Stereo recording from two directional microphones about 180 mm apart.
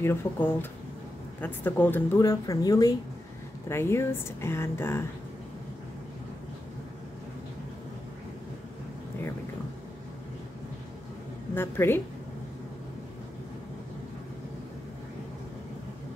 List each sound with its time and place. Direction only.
0.0 s a woman's voice: 15° left (ahead or behind)
11.5 s a woman's voice: 15° left (ahead or behind)